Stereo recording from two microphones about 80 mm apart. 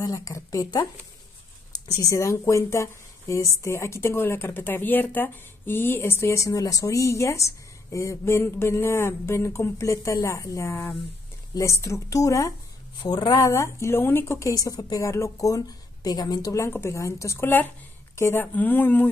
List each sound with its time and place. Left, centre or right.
0.0 s speech: left
1.7 s speech: left
13.0 s speech: left
13.4 s speech: left
14.5 s speech: left
15.0 s speech: left
16.7 s speech: left
18.5 s speech: left